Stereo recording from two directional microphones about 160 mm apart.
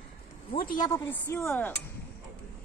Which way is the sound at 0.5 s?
70° left (ahead or behind).